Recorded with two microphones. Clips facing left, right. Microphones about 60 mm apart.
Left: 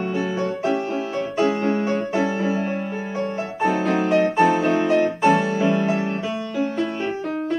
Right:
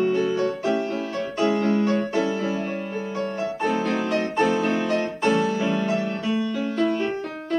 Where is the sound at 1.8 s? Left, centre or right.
Centre.